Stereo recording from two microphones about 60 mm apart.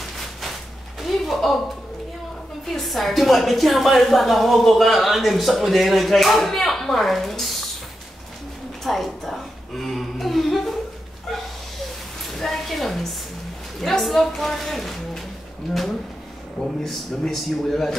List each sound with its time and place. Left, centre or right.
1.0 s speech: centre
2.6 s a woman's voice: centre
8.8 s a sound: centre
12.3 s a sound: centre
13.7 s a woman's voice: centre
16.8 s a man's voice: centre